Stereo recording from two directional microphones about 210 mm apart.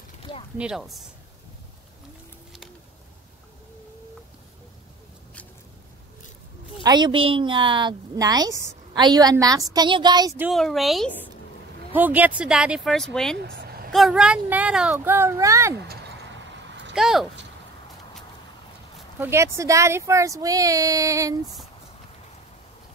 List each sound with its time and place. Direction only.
0.6 s speech: 5° right (ahead or behind)
6.8 s a woman's voice: 20° right (ahead or behind)
10.5 s speech: centre (ahead or behind)
13.4 s vehicle: 50° right (ahead or behind)
13.9 s speech: centre (ahead or behind)
16.9 s speech: centre (ahead or behind)
18.9 s speech: 10° right (ahead or behind)